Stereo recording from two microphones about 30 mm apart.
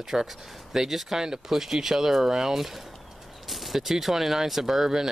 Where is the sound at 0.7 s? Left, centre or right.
Centre.